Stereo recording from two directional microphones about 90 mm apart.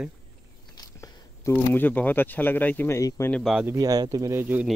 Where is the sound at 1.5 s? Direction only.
20° left (ahead or behind).